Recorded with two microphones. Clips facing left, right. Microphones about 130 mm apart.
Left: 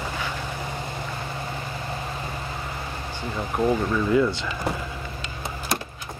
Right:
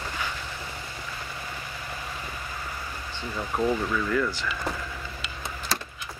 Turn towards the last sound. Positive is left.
turn(degrees=20)  # may be behind; listen again after turning